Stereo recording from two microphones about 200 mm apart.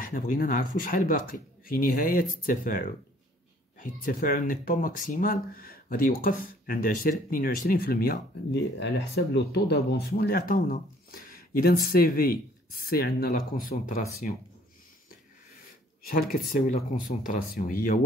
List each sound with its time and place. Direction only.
0.0 s speech: 45° left (ahead or behind)
8.7 s speech: 60° left (ahead or behind); by 14.0 s 40° left (ahead or behind)
16.0 s speech: 45° left (ahead or behind)